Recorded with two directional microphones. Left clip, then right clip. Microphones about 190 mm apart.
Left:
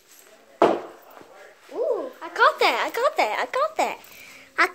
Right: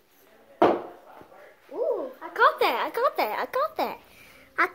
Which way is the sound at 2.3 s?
15° right (ahead or behind).